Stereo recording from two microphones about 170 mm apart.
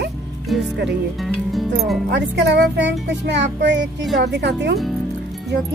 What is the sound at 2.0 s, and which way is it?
A child's voice, 90° right.